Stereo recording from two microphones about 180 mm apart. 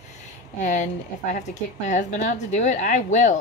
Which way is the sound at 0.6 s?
45° left (ahead or behind).